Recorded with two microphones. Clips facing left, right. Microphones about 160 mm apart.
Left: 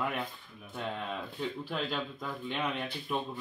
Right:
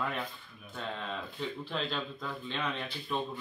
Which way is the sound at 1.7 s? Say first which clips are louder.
Left 1 dB; 10° left (ahead or behind).